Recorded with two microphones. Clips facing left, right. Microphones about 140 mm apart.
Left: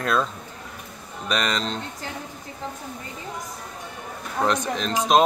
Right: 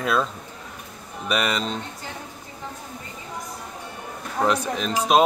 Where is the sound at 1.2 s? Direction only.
5° right (ahead or behind).